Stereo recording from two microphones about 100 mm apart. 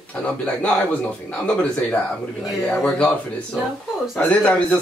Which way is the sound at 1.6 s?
15° left (ahead or behind).